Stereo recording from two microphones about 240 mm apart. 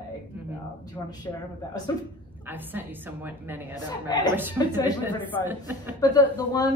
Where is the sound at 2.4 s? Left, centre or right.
Centre.